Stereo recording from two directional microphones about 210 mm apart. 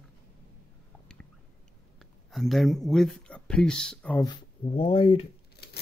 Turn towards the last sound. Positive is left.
turn(degrees=50)  # may be behind; listen again after turning